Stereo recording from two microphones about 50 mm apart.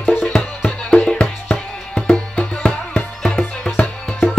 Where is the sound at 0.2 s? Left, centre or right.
Centre.